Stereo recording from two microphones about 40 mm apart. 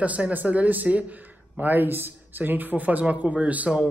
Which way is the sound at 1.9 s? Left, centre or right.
Right.